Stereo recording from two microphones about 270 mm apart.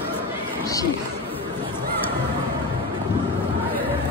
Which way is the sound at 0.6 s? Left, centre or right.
Centre.